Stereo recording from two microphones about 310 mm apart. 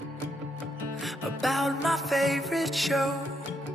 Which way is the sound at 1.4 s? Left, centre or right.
Centre.